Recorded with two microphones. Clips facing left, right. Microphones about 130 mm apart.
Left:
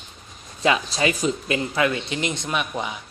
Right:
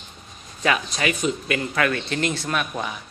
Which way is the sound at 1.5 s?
20° left (ahead or behind).